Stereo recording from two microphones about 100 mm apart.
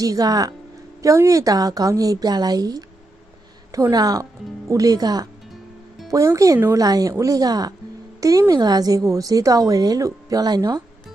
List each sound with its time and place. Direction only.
0.0 s a woman's voice: 35° right (ahead or behind)